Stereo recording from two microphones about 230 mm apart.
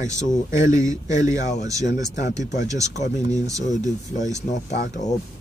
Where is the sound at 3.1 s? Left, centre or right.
Left.